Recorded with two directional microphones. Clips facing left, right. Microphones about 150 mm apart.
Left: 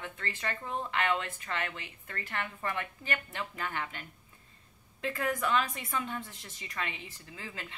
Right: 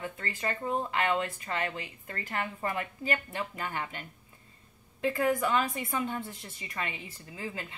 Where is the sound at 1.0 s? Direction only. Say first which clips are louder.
Right 2 dB; 40° right (ahead or behind).